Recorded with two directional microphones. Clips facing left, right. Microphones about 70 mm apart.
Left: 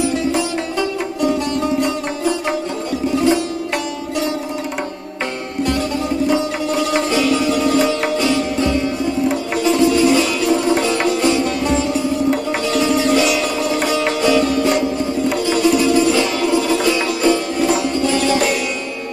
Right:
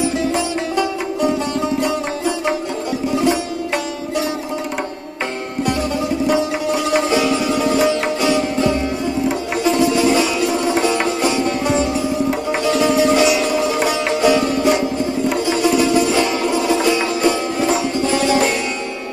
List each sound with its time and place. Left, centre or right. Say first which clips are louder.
6.3 s music: even; centre
9.6 s sitar: left 2 dB; centre
12.6 s music: right 3 dB; right
13.8 s sitar: even; centre
15.3 s music: left 1 dB; right